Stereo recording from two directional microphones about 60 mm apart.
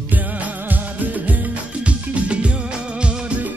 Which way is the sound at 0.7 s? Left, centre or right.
Right.